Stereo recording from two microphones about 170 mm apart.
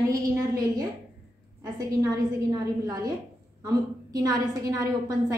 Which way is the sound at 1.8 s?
20° right (ahead or behind).